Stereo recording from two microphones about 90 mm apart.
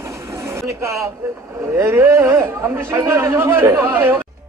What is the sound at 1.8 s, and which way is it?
Speech, 30° right (ahead or behind).